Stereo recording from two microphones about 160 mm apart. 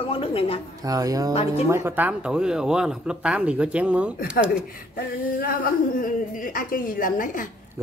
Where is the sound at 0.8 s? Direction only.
20° right (ahead or behind).